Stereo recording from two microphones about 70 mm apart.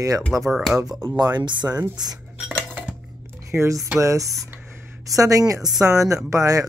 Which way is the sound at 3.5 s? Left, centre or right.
Right.